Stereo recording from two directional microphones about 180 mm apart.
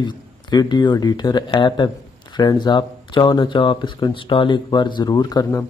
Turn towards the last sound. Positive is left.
turn(degrees=20)  # may be behind; listen again after turning